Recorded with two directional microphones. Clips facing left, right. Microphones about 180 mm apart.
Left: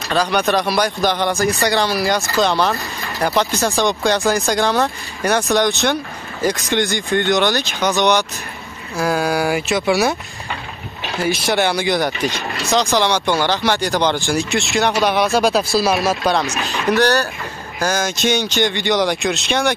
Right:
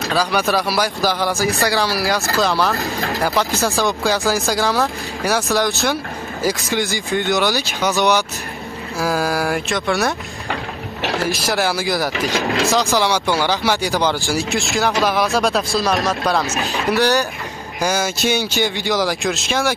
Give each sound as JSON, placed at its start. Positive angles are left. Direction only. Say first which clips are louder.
{"t": 0.1, "sound": "speech", "louder": "left 2 dB", "side_deg": -5}
{"t": 10.5, "sound": "a sound", "louder": "right 4 dB", "side_deg": -75}
{"t": 11.2, "sound": "speech", "louder": "left 5 dB", "side_deg": 0}
{"t": 16.9, "sound": "speech", "louder": "left 1 dB", "side_deg": -10}